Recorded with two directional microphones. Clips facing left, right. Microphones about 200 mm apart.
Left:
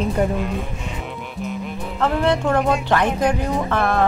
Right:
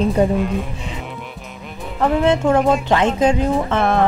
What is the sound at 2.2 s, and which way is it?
Speech, 20° right (ahead or behind).